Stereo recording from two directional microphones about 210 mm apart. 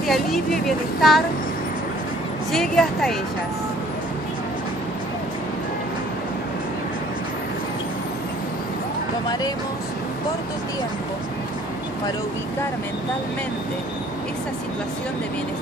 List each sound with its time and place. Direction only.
0.0 s speech: centre (ahead or behind)
2.5 s speech: centre (ahead or behind)